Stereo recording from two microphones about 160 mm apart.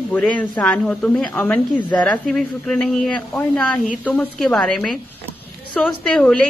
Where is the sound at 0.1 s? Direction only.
10° left (ahead or behind).